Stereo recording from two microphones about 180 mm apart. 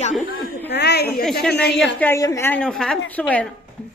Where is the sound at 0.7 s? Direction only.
65° left (ahead or behind).